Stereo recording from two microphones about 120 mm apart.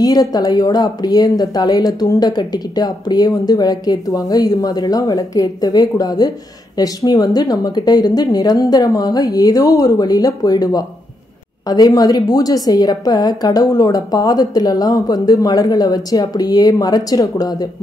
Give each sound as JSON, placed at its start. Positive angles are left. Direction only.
{"t": 0.0, "sound": "speech", "side_deg": 30}